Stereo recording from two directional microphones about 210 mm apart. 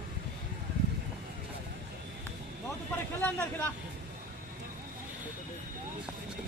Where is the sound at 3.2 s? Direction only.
10° left (ahead or behind).